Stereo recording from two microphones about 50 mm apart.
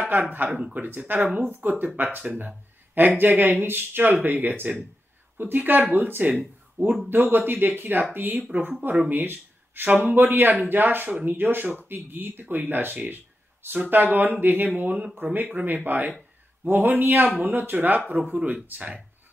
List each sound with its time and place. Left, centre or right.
0.0 s speech: right
0.5 s speech: centre
0.8 s speech: right